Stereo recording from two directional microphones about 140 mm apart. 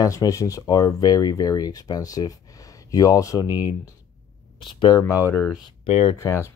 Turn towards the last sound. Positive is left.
turn(degrees=20)  # may be behind; listen again after turning